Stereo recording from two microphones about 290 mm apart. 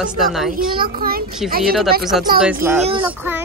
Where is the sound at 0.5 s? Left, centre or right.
Right.